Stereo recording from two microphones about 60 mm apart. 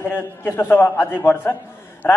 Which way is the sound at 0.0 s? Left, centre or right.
Left.